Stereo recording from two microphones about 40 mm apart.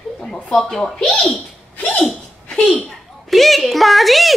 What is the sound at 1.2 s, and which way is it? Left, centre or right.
Speech, centre.